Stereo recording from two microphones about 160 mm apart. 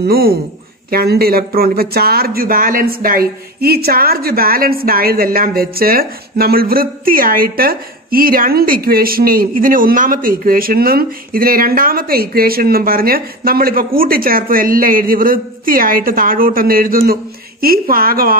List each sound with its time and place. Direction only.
0.0 s speech: 70° right (ahead or behind)